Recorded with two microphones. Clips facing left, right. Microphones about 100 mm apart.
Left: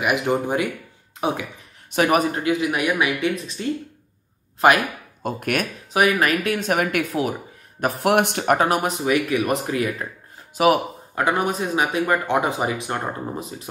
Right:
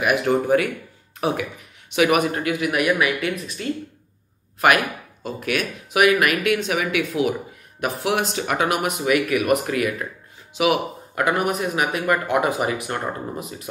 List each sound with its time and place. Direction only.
0.0 s speech: 20° left (ahead or behind)
1.9 s speech: 35° left (ahead or behind)
5.2 s speech: 50° left (ahead or behind)
5.9 s speech: 30° left (ahead or behind)
10.5 s speech: 40° left (ahead or behind)
11.1 s speech: 30° left (ahead or behind)